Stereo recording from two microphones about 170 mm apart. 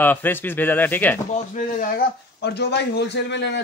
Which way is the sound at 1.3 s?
50° left (ahead or behind).